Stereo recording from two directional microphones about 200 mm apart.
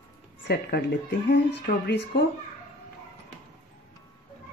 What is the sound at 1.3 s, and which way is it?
Speech, 55° left (ahead or behind).